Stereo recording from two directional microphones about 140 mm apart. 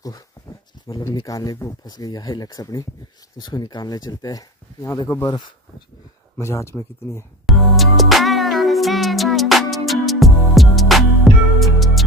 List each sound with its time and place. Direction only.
0.8 s speech: 25° left (ahead or behind)
6.3 s speech: 20° left (ahead or behind)
7.4 s music: centre (ahead or behind)